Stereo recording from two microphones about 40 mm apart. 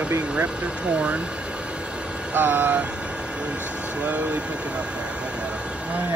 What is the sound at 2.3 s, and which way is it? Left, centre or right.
Speech, right.